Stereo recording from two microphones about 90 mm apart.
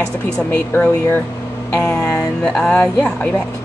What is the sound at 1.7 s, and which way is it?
Speech, 10° left (ahead or behind).